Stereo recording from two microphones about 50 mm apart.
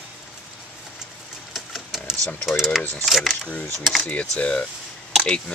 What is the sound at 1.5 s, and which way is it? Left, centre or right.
Typewriter, centre.